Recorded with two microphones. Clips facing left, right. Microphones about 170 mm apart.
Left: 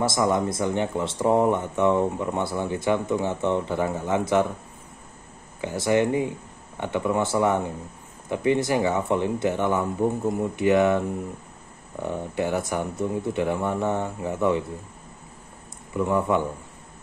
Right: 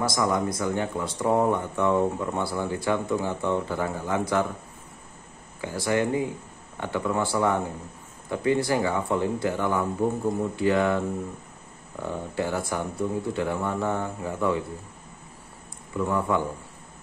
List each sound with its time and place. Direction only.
0.0 s speech: 25° left (ahead or behind)
5.6 s speech: 20° left (ahead or behind)
12.0 s speech: 20° left (ahead or behind)
16.1 s speech: 20° left (ahead or behind)